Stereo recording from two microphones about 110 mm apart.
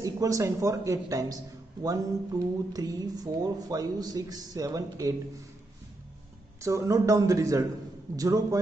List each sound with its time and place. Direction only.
0.0 s a man's voice: 30° right (ahead or behind)
6.6 s a man's voice: 30° right (ahead or behind)